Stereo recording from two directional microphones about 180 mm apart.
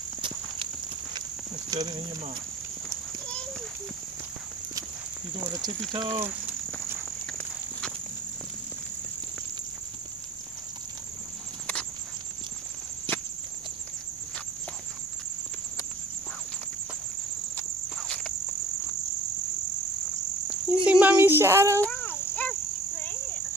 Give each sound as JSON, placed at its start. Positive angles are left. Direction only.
{"t": 1.7, "sound": "speech", "side_deg": -25}
{"t": 5.9, "sound": "speech", "side_deg": -25}
{"t": 7.2, "sound": "walk", "side_deg": 5}
{"t": 17.6, "sound": "cricket", "side_deg": 5}
{"t": 20.4, "sound": "cricket", "side_deg": -5}
{"t": 21.8, "sound": "cricket", "side_deg": 10}